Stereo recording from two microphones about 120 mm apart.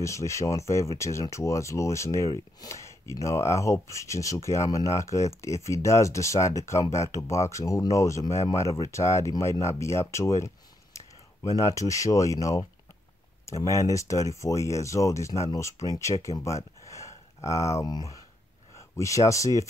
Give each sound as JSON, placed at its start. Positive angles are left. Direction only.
{"t": 0.0, "sound": "speech", "side_deg": 25}